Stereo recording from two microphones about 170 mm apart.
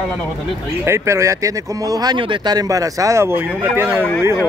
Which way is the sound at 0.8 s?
15° right (ahead or behind).